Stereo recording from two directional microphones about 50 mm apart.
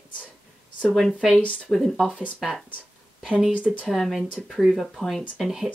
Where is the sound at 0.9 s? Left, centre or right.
Centre.